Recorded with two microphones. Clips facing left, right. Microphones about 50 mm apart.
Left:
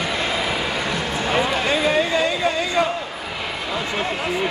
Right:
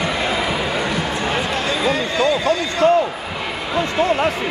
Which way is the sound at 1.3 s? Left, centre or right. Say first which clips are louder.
Left 1 dB; centre.